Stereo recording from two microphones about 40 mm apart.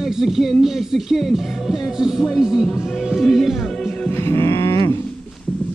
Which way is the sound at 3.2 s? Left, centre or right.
Centre.